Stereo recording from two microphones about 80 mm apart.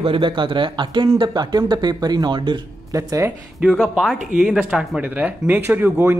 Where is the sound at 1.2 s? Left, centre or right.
Right.